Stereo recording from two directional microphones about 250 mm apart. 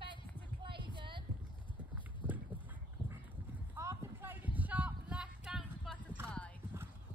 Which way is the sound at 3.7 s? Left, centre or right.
Centre.